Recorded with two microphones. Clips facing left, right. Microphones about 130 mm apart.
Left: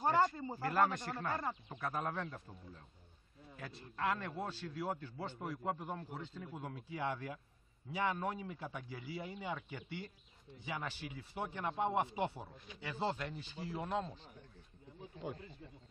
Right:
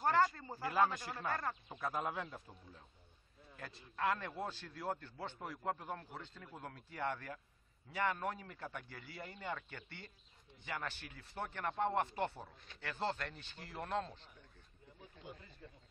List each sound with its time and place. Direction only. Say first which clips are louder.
0.0 s a sound: left 1 dB; 20° left (ahead or behind)
0.6 s a man's voice: left 1 dB; 5° right (ahead or behind)
1.3 s speech: even; 15° left (ahead or behind)
1.7 s a man's voice: right 1 dB; centre (ahead or behind)